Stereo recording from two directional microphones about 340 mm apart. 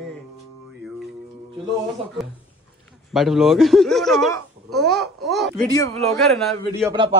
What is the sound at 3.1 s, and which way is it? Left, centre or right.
A child's voice, centre.